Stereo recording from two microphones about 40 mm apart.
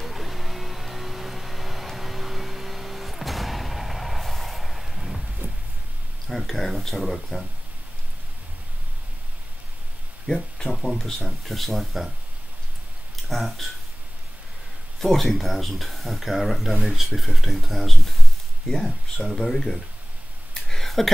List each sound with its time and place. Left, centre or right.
0.0 s vehicle: centre
5.4 s a sound: right
6.2 s speech: centre
10.2 s speech: centre
13.1 s speech: centre
15.0 s speech: centre
20.7 s a sound: centre